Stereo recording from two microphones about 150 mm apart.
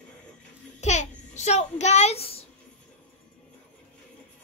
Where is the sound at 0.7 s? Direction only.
50° left (ahead or behind).